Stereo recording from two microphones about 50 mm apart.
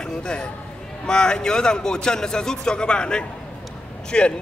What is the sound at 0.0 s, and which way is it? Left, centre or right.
A man's voice, centre.